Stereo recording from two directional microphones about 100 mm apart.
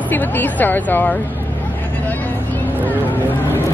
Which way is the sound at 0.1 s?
20° left (ahead or behind).